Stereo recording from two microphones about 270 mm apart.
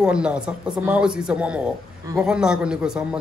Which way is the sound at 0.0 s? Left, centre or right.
Centre.